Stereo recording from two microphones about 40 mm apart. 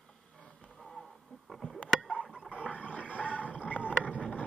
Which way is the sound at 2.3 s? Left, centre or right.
Centre.